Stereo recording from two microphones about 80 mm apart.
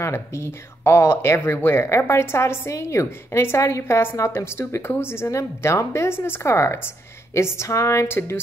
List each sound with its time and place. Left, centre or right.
0.0 s speech: left